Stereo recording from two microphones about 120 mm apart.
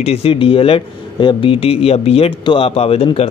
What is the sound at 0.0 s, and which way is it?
Speech, 55° left (ahead or behind).